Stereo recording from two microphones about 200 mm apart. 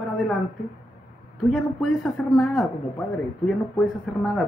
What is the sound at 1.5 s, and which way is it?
Speech, centre (ahead or behind).